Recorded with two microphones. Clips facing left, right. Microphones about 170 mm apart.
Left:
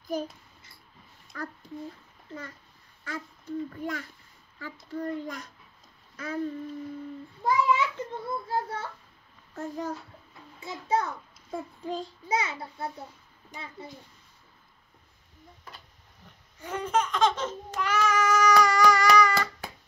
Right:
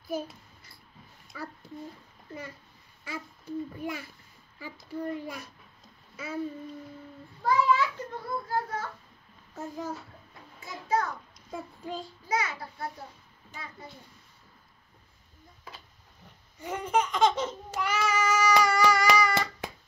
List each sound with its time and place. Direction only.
0.1 s a child's voice: 5° right (ahead or behind)
1.3 s a child's voice: 10° right (ahead or behind)
3.0 s babbling: 10° right (ahead or behind)
6.1 s a child's voice: 5° right (ahead or behind)
7.4 s a sound: 20° left (ahead or behind)
8.5 s a child's voice: 30° left (ahead or behind)
9.6 s a child's voice: centre (ahead or behind)
10.6 s a child's voice: 25° left (ahead or behind)
12.3 s a child's voice: 25° left (ahead or behind)
16.5 s babbling: 10° right (ahead or behind)
18.6 s hands: 10° right (ahead or behind)